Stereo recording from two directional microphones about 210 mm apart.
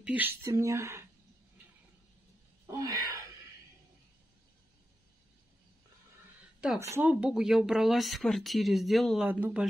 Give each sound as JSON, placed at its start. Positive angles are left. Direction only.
{"t": 0.0, "sound": "speech", "side_deg": -10}
{"t": 2.6, "sound": "wail", "side_deg": -15}
{"t": 6.8, "sound": "speech", "side_deg": -10}